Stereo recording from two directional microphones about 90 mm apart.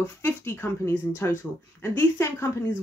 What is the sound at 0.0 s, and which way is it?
Speech, 25° left (ahead or behind).